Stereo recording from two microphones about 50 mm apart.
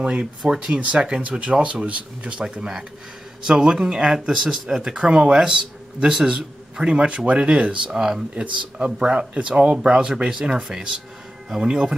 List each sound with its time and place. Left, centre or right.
0.0 s a man's voice: centre
4.9 s a man's voice: right